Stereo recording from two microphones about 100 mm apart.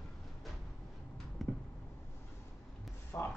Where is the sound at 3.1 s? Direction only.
20° left (ahead or behind).